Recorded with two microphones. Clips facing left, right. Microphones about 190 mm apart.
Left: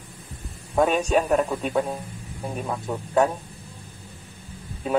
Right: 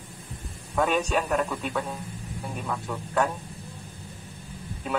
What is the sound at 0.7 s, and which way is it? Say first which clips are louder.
Speech: left 4 dB; 35° left (ahead or behind).